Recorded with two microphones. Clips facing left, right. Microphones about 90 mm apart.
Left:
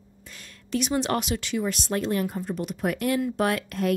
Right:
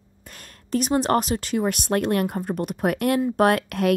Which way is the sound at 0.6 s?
40° right (ahead or behind).